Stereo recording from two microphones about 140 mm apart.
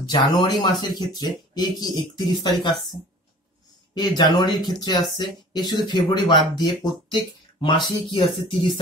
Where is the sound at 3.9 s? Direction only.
30° left (ahead or behind).